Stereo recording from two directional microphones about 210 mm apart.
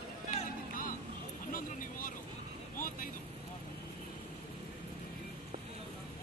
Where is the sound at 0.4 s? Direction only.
40° left (ahead or behind).